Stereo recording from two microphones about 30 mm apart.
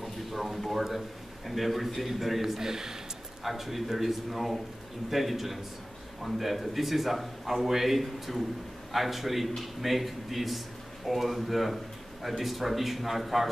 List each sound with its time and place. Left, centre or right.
0.0 s a sound: centre
1.5 s speech: centre
2.6 s speech: centre
3.4 s speech: centre